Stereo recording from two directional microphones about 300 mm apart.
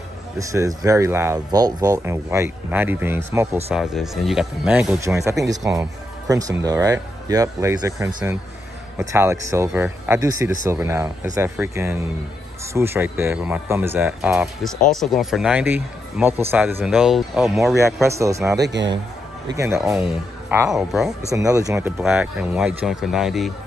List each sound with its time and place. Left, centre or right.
0.4 s speech: centre
18.6 s a man's voice: right
19.5 s speech: centre